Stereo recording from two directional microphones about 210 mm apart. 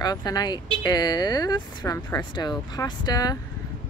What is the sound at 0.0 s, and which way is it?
Speech, 20° left (ahead or behind).